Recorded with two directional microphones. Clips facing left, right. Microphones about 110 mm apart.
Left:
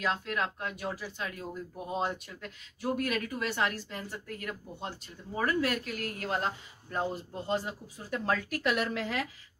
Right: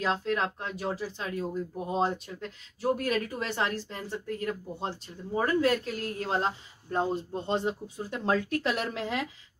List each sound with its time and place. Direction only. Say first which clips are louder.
0.0 s speech: right 3 dB; 30° right (ahead or behind)